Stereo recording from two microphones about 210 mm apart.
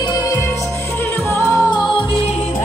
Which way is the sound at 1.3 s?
10° left (ahead or behind).